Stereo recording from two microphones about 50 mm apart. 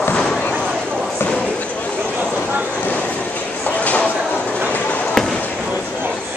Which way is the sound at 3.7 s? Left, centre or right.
Left.